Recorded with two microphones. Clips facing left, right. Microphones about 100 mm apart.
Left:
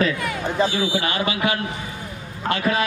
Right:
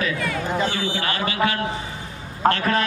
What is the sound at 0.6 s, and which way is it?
A man's voice, 10° left (ahead or behind).